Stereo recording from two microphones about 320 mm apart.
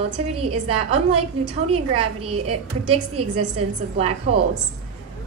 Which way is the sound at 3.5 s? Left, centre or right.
Centre.